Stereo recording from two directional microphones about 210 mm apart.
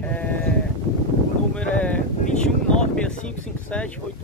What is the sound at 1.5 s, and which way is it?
Speech, 5° left (ahead or behind).